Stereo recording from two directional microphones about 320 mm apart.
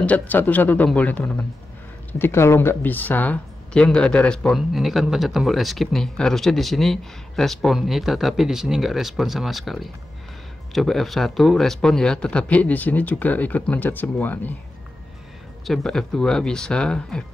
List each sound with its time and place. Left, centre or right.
0.0 s speech: centre
15.6 s speech: centre